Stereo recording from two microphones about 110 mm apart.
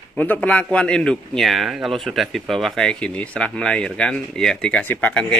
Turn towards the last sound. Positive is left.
turn(degrees=5)  # may be behind; listen again after turning